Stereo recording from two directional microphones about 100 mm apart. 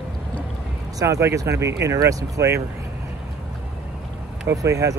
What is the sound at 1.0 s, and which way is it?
Speech, 30° right (ahead or behind).